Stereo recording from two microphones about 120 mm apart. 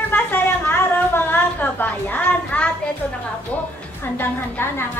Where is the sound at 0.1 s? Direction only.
15° left (ahead or behind).